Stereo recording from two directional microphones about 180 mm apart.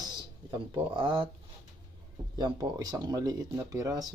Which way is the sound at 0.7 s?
25° right (ahead or behind).